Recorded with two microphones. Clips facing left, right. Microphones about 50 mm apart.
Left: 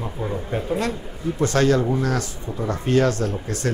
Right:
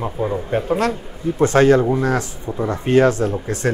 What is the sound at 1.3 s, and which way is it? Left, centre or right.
A man's voice, right.